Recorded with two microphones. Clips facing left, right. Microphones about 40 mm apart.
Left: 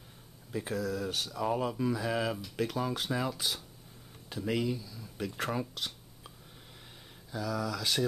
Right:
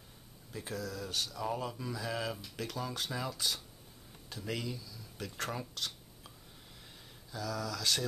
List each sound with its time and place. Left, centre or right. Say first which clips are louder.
0.5 s speech: left 7 dB; left